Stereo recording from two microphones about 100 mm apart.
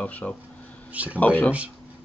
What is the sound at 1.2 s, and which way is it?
Speech, 15° left (ahead or behind).